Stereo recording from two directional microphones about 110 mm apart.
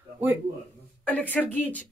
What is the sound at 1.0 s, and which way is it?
Speech, 15° left (ahead or behind).